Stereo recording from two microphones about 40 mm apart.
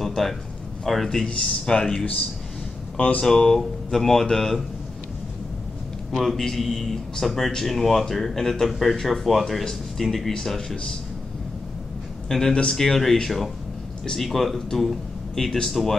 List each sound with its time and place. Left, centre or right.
0.0 s a sound: centre
0.8 s speech: centre
3.0 s speech: left
3.3 s speech: centre
6.1 s speech: centre
12.3 s speech: centre